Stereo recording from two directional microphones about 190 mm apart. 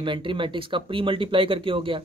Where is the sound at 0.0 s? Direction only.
25° right (ahead or behind).